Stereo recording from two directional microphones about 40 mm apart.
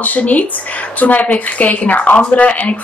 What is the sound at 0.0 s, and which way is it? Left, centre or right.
Speech, left.